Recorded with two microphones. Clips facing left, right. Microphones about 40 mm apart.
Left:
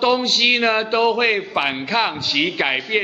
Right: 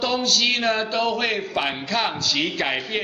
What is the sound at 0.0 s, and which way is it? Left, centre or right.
A man's voice, left.